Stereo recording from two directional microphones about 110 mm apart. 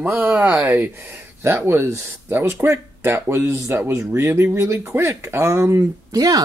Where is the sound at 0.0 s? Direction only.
20° right (ahead or behind).